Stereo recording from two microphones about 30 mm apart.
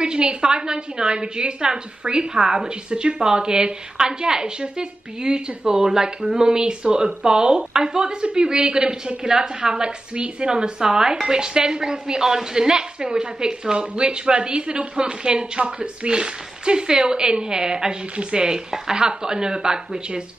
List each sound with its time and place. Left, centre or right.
0.0 s a woman's voice: right
2.9 s a woman's voice: right